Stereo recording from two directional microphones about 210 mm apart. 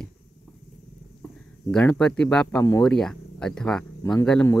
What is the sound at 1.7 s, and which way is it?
Speech, 5° left (ahead or behind).